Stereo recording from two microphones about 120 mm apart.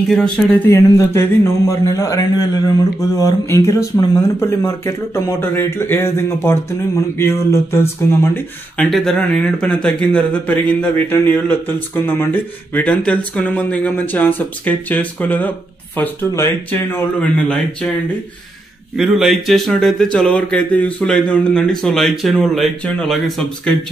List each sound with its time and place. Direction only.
0.1 s a man's voice: 5° left (ahead or behind)
0.7 s a man's voice: 25° left (ahead or behind)
8.7 s a man's voice: 5° left (ahead or behind)
18.9 s speech: 5° right (ahead or behind)